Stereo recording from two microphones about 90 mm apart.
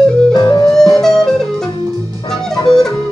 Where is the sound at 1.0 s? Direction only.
5° left (ahead or behind).